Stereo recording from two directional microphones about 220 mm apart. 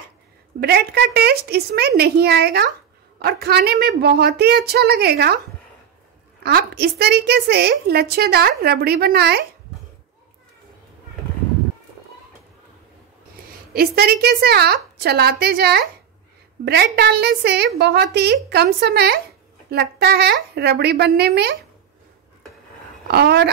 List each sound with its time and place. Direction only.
0.6 s a woman's voice: 45° right (ahead or behind)
6.4 s a woman's voice: 45° right (ahead or behind)
13.7 s a woman's voice: 45° right (ahead or behind)
23.0 s a woman's voice: 50° right (ahead or behind)